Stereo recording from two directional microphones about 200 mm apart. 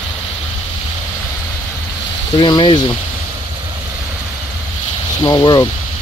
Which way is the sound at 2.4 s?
25° left (ahead or behind).